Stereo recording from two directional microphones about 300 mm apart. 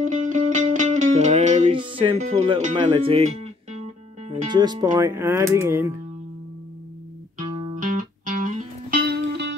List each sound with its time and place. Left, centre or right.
0.0 s music: right
4.3 s speech: centre
7.3 s music: right